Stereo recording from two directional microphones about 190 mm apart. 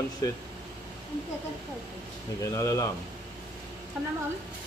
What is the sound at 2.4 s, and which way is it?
Speech, 15° left (ahead or behind).